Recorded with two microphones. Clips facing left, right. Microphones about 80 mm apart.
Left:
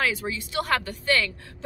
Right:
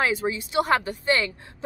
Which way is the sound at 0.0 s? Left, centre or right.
Right.